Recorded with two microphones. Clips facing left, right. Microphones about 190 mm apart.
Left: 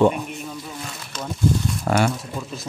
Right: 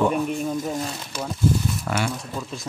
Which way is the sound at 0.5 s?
45° right (ahead or behind).